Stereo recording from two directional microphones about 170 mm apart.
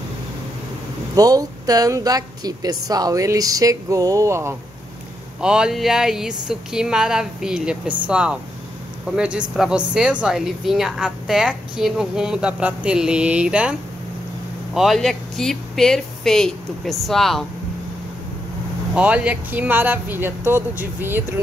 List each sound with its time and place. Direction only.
1.1 s a woman's voice: 20° right (ahead or behind)
5.4 s a woman's voice: 5° right (ahead or behind)
18.9 s speech: 10° right (ahead or behind)